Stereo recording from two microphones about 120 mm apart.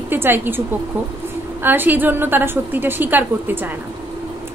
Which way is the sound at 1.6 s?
15° right (ahead or behind).